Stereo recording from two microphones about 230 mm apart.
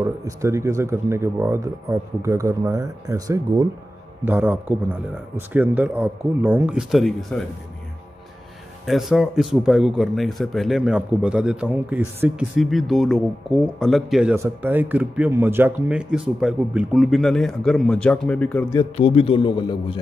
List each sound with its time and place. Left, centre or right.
0.0 s speech: centre
8.8 s speech: centre
18.9 s a man's voice: left